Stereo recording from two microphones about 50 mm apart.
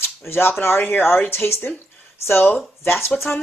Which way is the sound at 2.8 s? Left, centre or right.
Left.